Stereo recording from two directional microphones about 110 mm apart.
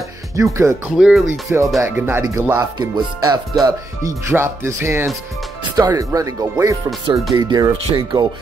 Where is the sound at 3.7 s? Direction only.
30° right (ahead or behind).